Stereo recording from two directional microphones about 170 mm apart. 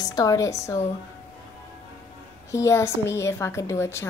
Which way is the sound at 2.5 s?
15° left (ahead or behind).